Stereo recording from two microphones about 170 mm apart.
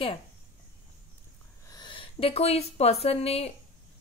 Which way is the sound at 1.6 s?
25° left (ahead or behind).